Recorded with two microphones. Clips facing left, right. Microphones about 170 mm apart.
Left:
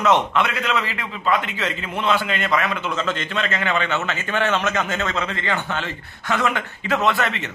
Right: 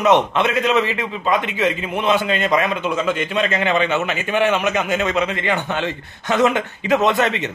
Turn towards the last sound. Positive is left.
turn(degrees=-20)  # may be behind; listen again after turning